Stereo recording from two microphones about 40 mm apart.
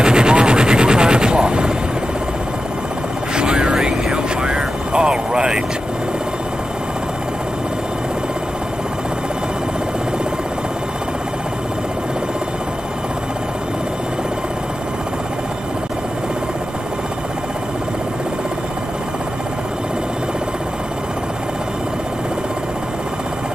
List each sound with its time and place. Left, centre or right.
0.0 s vehicle: right
3.3 s helicopter: right